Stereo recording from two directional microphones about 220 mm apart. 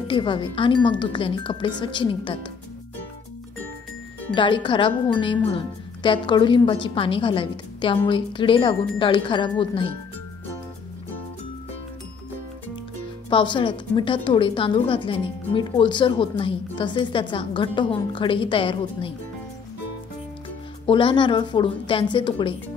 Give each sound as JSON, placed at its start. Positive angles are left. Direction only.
{"t": 0.1, "sound": "a woman's voice", "side_deg": 20}
{"t": 4.4, "sound": "a woman's voice", "side_deg": 20}
{"t": 13.3, "sound": "a woman's voice", "side_deg": 20}
{"t": 20.8, "sound": "a woman's voice", "side_deg": 25}